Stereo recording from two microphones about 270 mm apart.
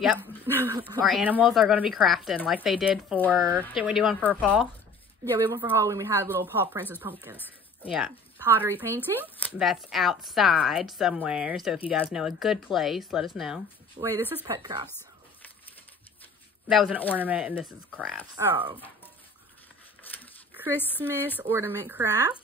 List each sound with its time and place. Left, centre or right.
0.0 s speech: centre
5.5 s speech: centre
7.9 s speech: centre
13.9 s speech: centre
14.9 s a sound: centre
16.6 s speech: centre
20.0 s a sound: centre
20.7 s speech: centre
21.5 s speech: centre